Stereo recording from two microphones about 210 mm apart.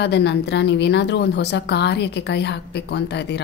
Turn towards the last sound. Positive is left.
turn(degrees=55)  # may be behind; listen again after turning